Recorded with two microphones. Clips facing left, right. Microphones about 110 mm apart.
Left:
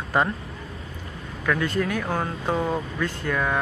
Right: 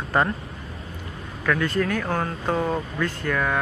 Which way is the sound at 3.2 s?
20° left (ahead or behind).